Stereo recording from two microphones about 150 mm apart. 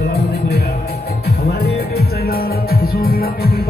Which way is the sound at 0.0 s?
90° left.